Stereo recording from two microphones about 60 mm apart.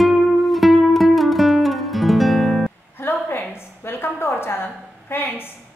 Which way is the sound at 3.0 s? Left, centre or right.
Left.